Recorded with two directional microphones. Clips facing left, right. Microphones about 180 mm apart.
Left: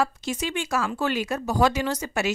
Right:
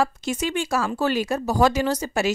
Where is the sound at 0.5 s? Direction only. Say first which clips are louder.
Right 3 dB; 35° right (ahead or behind).